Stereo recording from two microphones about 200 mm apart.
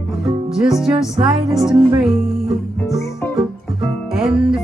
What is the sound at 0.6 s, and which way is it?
Speech, centre (ahead or behind).